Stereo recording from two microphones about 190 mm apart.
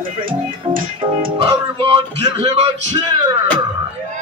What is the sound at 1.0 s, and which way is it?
Music, 25° right (ahead or behind).